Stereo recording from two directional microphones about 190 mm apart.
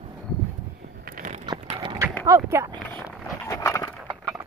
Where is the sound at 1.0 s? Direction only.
45° right (ahead or behind).